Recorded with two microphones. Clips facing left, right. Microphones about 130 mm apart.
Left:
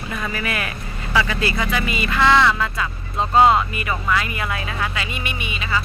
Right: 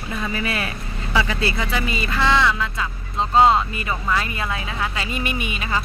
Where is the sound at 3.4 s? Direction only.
30° right (ahead or behind).